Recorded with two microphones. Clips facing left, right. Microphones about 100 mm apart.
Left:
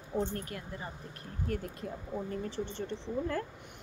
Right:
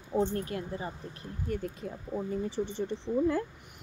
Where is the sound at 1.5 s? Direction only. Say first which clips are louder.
Right 2 dB; 5° right (ahead or behind).